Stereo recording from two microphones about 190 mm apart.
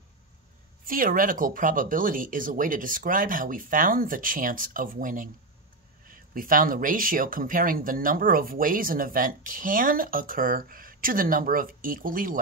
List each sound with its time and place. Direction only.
0.8 s speech: 50° right (ahead or behind)